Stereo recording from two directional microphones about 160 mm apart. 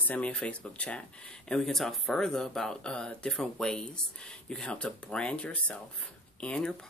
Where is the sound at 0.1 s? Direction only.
10° left (ahead or behind).